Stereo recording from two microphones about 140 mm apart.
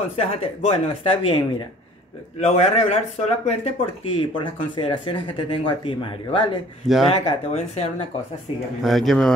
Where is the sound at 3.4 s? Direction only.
45° left (ahead or behind).